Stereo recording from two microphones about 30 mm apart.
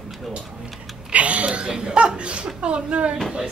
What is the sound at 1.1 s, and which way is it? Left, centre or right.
Speech, right.